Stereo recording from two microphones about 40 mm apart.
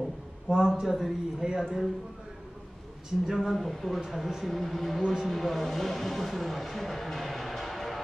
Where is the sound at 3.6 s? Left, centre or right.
Centre.